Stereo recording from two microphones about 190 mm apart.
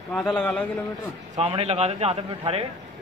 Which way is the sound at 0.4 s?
5° left (ahead or behind).